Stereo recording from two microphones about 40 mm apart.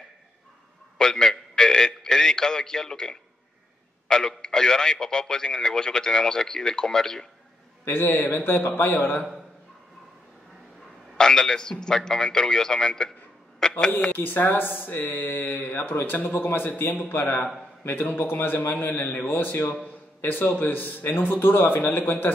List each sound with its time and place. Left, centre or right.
0.9 s a sound: centre
4.1 s speech: centre
7.8 s speech: left
11.1 s a man's voice: centre
14.1 s a man's voice: left
20.2 s speech: left